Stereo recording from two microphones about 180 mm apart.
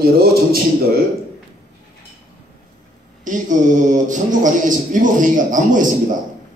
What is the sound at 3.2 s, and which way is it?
A man's voice, 45° right (ahead or behind).